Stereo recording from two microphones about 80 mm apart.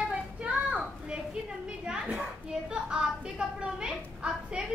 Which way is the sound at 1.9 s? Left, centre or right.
Centre.